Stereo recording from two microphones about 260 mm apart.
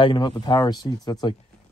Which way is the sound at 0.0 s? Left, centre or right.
Centre.